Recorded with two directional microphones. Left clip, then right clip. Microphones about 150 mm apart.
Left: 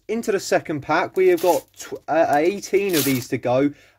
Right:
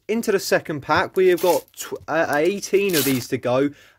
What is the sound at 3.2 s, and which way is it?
Speech, 35° right (ahead or behind).